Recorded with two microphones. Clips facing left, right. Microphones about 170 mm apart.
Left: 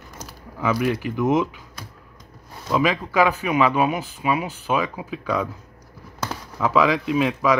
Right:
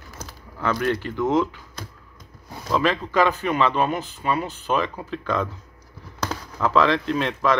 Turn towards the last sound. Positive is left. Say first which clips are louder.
# left 2 dB
turn(degrees=5)  # may be behind; listen again after turning